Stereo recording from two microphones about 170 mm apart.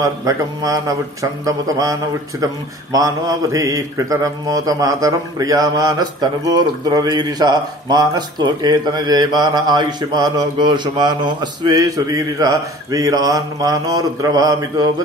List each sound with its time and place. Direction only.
0.0 s a man's voice: 20° right (ahead or behind)